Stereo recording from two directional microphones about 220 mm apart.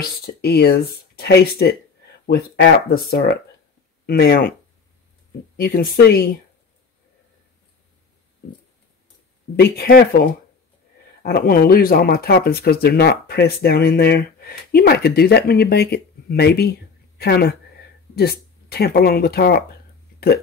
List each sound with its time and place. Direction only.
0.2 s speech: 45° left (ahead or behind)
5.6 s speech: 45° left (ahead or behind)
9.6 s speech: 45° left (ahead or behind)
11.2 s speech: 45° left (ahead or behind)